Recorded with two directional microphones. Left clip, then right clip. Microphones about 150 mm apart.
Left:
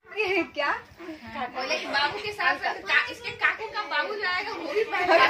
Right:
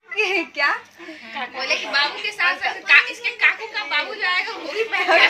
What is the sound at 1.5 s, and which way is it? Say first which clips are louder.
A woman's voice: right 7 dB; 30° left (ahead or behind).